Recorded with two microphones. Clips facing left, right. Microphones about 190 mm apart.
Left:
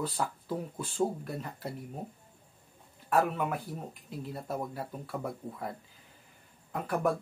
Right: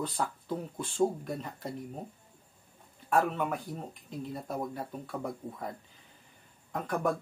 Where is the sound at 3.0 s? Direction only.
5° left (ahead or behind).